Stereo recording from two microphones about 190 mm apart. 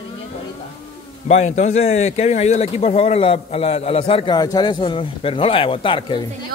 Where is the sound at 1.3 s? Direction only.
40° left (ahead or behind).